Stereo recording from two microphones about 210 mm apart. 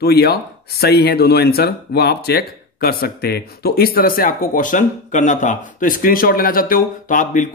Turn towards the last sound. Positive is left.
turn(degrees=40)  # may be behind; listen again after turning